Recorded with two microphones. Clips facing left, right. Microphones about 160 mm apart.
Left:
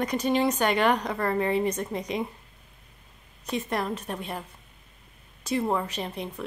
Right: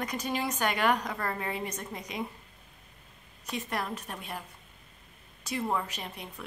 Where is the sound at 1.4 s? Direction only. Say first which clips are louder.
Left 10 dB; 60° left (ahead or behind).